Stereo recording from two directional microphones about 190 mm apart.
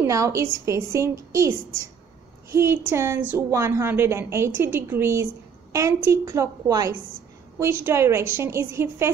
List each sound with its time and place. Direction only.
0.0 s a woman's voice: 15° right (ahead or behind)
2.5 s a woman's voice: 15° right (ahead or behind)